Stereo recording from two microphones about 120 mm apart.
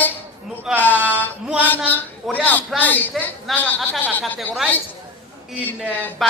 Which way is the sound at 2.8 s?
15° left (ahead or behind).